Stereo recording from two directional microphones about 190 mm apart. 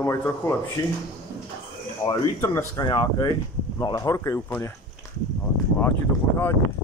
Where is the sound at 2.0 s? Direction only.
15° left (ahead or behind).